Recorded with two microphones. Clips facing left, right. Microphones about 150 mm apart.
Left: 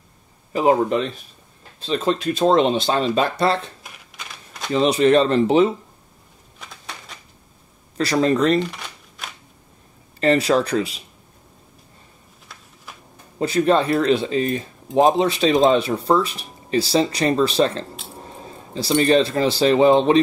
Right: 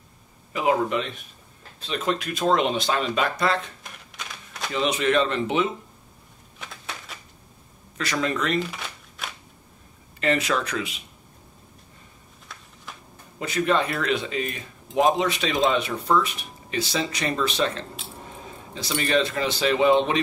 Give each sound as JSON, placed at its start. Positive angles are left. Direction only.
{"t": 0.5, "sound": "speech", "side_deg": 35}
{"t": 3.8, "sound": "a sound", "side_deg": 5}
{"t": 4.7, "sound": "speech", "side_deg": 35}
{"t": 6.6, "sound": "typewriter", "side_deg": 0}
{"t": 8.0, "sound": "speech", "side_deg": 35}
{"t": 8.5, "sound": "shuffling cards", "side_deg": 0}
{"t": 10.2, "sound": "speech", "side_deg": 35}
{"t": 13.4, "sound": "speech", "side_deg": 35}